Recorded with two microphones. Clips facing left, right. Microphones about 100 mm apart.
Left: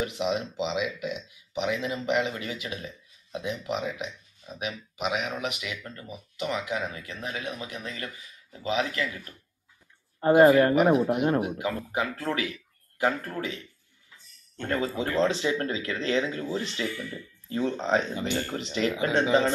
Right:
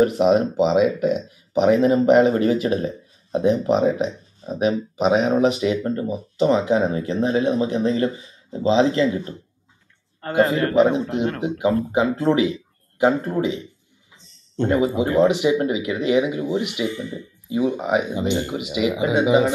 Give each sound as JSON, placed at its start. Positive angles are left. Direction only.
{"t": 0.0, "sound": "speech", "side_deg": -45}
{"t": 10.2, "sound": "a man's voice", "side_deg": 20}
{"t": 10.7, "sound": "speech", "side_deg": -25}